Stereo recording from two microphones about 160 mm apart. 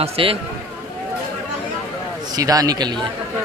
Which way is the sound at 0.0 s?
35° right (ahead or behind).